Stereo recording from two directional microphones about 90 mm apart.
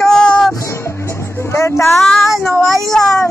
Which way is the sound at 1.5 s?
30° left (ahead or behind).